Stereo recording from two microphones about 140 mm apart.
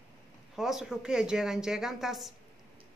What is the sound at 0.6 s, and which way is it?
Speech, 5° right (ahead or behind).